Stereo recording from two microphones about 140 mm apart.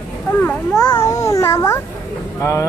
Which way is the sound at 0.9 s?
20° left (ahead or behind).